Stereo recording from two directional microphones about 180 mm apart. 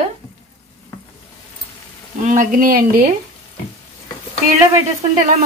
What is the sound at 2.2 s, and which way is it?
Speech, 45° right (ahead or behind).